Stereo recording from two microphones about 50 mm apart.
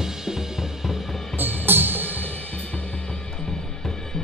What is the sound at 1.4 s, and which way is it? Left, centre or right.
Music, right.